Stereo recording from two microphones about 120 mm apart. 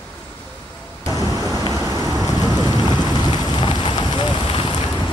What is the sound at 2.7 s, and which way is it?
Rain, 35° left (ahead or behind).